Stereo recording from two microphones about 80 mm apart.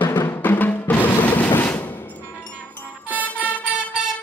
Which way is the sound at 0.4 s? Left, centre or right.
Left.